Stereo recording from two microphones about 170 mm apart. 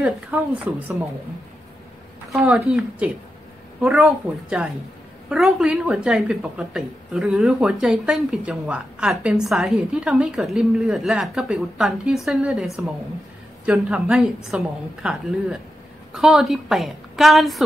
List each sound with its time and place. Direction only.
0.3 s a woman's voice: 10° right (ahead or behind)
2.3 s a woman's voice: centre (ahead or behind)